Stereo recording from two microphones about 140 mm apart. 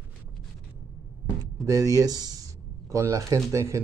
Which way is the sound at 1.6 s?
25° right (ahead or behind).